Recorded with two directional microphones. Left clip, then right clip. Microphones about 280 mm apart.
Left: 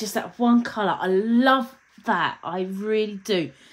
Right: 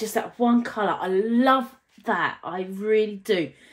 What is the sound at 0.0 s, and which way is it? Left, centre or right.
Speech, left.